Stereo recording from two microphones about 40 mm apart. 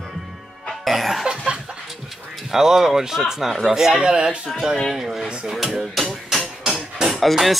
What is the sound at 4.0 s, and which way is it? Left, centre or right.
Speech, right.